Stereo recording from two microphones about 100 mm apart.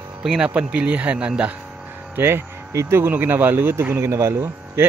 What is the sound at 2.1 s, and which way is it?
Speech, 25° right (ahead or behind).